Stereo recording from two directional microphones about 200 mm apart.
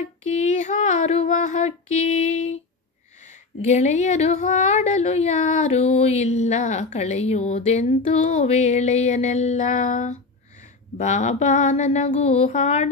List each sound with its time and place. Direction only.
0.0 s a woman's voice: 35° left (ahead or behind)
3.6 s a woman's voice: 35° left (ahead or behind)